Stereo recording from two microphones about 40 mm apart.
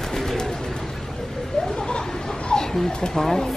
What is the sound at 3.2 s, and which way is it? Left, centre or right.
Speech, centre.